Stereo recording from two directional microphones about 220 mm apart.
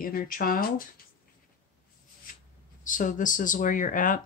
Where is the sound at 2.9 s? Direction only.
35° left (ahead or behind).